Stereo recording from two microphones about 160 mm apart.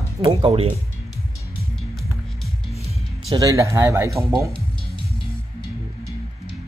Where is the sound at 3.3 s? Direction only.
20° right (ahead or behind).